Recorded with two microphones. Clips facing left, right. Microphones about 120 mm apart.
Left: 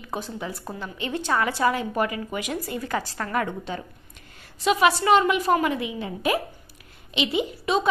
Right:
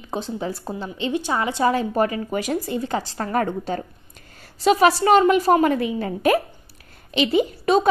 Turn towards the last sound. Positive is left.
turn(degrees=-45)  # may be behind; listen again after turning